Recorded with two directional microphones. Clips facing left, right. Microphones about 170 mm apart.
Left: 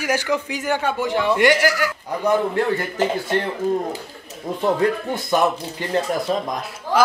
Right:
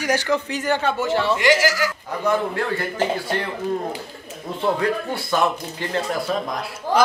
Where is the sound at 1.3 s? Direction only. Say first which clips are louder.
Left 3 dB; 60° left (ahead or behind).